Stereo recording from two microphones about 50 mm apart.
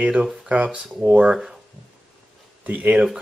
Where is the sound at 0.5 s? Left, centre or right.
Right.